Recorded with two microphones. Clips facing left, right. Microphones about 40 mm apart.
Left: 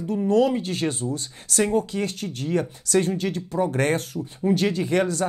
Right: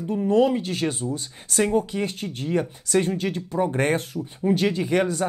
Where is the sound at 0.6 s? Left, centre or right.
Right.